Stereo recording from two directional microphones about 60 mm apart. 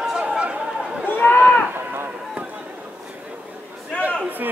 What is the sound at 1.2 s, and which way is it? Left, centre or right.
Run, left.